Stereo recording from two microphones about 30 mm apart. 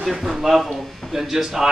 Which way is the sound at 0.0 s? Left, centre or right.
Centre.